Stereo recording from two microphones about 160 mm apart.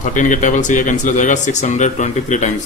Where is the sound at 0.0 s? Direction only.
55° left (ahead or behind).